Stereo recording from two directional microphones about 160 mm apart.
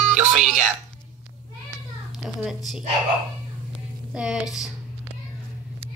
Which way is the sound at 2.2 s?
Centre (ahead or behind).